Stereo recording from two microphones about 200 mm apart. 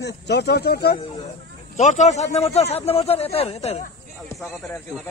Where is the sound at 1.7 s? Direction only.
35° left (ahead or behind).